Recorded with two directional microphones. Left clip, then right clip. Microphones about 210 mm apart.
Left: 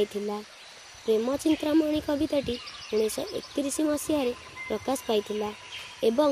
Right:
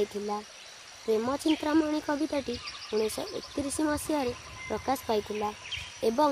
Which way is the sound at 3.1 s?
10° left (ahead or behind).